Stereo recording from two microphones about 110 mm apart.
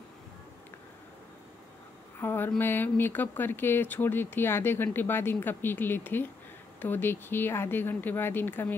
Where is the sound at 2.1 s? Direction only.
20° left (ahead or behind).